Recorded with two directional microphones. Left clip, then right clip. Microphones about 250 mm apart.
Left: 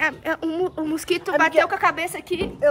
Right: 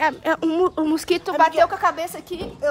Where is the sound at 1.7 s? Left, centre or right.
Centre.